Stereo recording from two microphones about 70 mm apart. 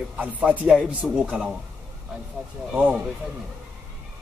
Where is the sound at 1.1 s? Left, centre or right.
Centre.